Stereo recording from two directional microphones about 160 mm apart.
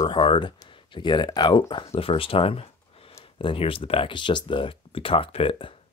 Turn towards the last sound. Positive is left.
turn(degrees=35)  # may be behind; listen again after turning